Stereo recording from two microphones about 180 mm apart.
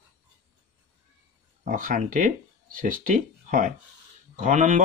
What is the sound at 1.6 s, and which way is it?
Speech, 50° right (ahead or behind).